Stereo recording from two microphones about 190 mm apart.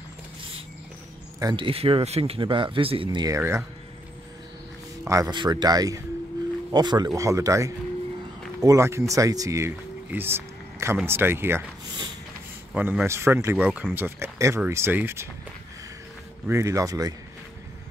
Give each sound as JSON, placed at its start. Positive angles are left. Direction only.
{"t": 1.4, "sound": "speech", "side_deg": -25}
{"t": 5.0, "sound": "speech", "side_deg": -20}
{"t": 12.7, "sound": "speech", "side_deg": -10}
{"t": 16.4, "sound": "speech", "side_deg": -15}